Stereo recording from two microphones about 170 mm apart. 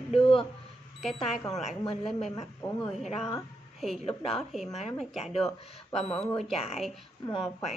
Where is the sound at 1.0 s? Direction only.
Centre (ahead or behind).